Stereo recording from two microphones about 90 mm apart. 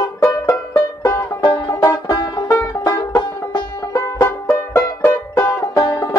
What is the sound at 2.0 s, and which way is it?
Music, 50° left (ahead or behind).